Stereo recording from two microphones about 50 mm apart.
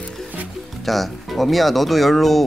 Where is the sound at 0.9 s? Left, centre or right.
Centre.